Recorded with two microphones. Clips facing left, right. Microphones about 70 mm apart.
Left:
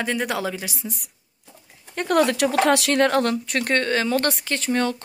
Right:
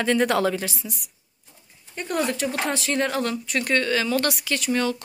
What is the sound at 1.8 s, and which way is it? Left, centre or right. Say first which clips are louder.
Speech: left 6 dB; left.